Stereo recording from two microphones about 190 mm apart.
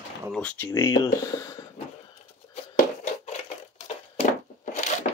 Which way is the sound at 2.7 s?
40° left (ahead or behind).